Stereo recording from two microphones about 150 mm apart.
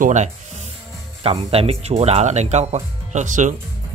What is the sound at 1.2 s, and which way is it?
Speech, 40° right (ahead or behind).